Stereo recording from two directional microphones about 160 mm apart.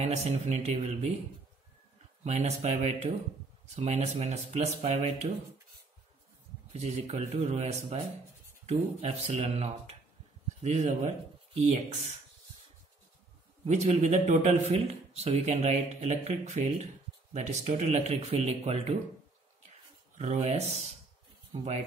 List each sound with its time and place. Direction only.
0.0 s speech: 40° right (ahead or behind)
2.2 s a man's voice: 45° right (ahead or behind)
6.7 s a man's voice: 40° right (ahead or behind)
13.7 s speech: 45° right (ahead or behind)
20.2 s speech: 40° right (ahead or behind)